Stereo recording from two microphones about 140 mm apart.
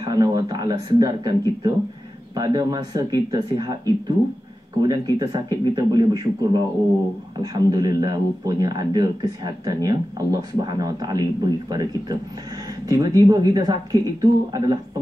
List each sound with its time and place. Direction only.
0.0 s speech: 30° right (ahead or behind)